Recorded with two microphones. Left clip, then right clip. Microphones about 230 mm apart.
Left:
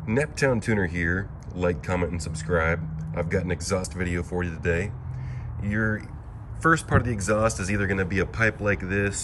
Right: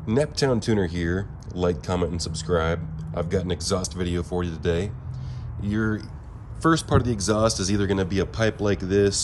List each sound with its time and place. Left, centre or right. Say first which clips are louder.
0.0 s speech: right 1 dB; centre